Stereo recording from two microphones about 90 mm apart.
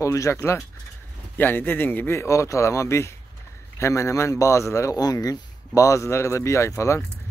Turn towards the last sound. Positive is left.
turn(degrees=35)  # may be behind; listen again after turning